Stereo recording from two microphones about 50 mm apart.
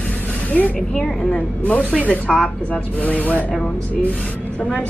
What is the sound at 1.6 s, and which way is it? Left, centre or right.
Speech, left.